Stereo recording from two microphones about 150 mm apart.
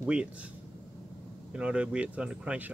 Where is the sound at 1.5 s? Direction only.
5° right (ahead or behind).